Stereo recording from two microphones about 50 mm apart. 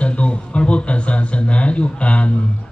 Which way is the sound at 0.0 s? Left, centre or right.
Left.